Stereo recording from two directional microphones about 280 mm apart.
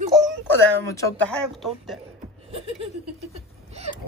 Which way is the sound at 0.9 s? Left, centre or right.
Centre.